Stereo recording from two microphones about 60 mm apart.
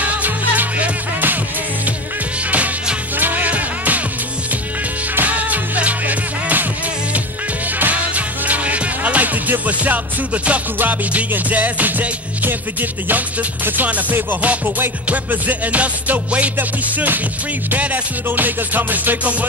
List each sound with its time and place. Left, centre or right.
0.0 s music: right
2.5 s music: right
5.1 s music: right
7.8 s music: right